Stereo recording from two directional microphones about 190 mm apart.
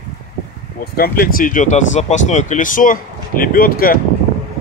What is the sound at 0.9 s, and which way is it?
Speech, 50° left (ahead or behind).